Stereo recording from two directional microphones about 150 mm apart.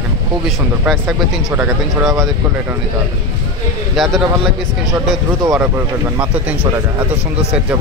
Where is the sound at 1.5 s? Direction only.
20° right (ahead or behind).